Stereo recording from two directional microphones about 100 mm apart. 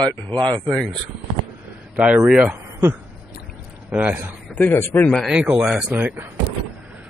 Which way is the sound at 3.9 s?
15° right (ahead or behind).